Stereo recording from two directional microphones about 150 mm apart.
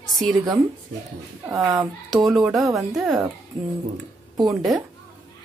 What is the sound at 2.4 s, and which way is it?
Speech, centre (ahead or behind).